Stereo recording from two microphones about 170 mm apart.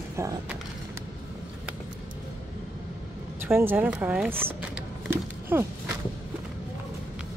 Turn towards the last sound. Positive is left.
turn(degrees=-15)  # may be behind; listen again after turning